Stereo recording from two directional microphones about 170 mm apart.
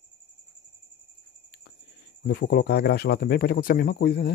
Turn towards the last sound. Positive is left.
turn(degrees=65)  # may be behind; listen again after turning